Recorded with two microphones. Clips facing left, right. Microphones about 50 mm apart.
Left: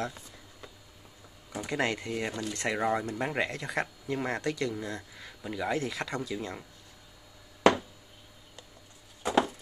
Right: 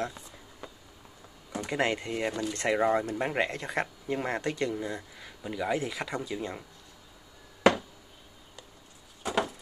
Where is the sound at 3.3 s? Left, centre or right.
Right.